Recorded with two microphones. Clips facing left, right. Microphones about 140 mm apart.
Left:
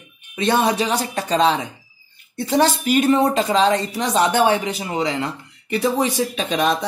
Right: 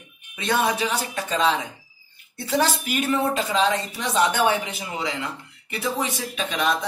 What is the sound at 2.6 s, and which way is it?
Speech, 30° left (ahead or behind).